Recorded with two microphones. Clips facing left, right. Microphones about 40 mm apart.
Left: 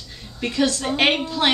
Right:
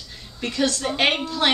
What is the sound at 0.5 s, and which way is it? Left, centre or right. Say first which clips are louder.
Speech: left 2 dB; left.